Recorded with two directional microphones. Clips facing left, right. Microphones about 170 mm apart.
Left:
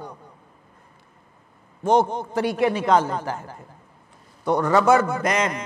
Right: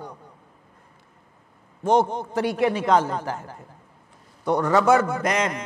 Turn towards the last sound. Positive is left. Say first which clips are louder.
# left 1 dB
turn(degrees=15)  # may be behind; listen again after turning